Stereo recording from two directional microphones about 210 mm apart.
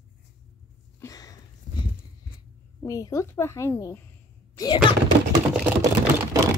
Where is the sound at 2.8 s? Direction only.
15° left (ahead or behind).